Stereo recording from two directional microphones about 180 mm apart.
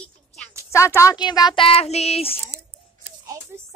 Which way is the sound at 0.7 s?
15° left (ahead or behind).